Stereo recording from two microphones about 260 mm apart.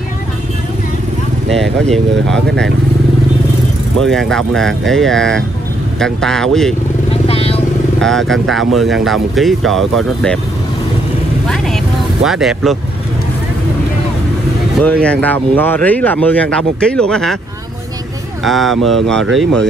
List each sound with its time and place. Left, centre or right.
1.5 s speech: centre
4.0 s speech: centre
7.1 s vehicle: left
8.0 s speech: centre
11.4 s vehicle: centre
12.3 s speech: centre
14.8 s speech: centre
18.4 s speech: centre